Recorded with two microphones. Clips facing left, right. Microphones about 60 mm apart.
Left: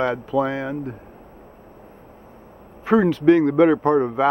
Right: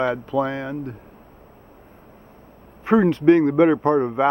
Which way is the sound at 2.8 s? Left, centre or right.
Centre.